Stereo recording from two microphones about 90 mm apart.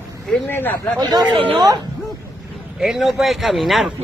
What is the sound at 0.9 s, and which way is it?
Speech, 50° right (ahead or behind).